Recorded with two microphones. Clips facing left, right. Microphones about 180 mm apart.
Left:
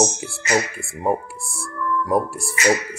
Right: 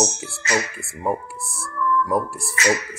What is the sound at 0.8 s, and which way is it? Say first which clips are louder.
Speech: left 2 dB; 10° left (ahead or behind).